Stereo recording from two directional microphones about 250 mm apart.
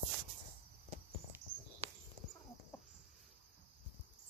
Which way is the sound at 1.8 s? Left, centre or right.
Right.